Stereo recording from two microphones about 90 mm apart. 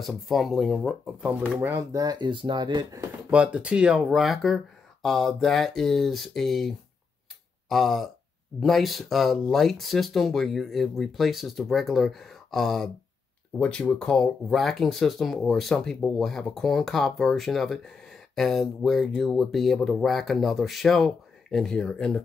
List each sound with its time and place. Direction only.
0.3 s speech: centre (ahead or behind)
1.8 s speech: 45° right (ahead or behind)
3.3 s speech: 15° right (ahead or behind); by 6.7 s 5° left (ahead or behind)
7.7 s speech: centre (ahead or behind)
13.6 s speech: 15° left (ahead or behind)